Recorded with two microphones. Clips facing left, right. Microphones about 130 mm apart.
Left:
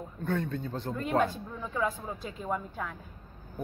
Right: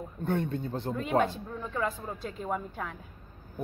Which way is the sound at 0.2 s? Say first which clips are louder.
Right 1 dB; 25° right (ahead or behind).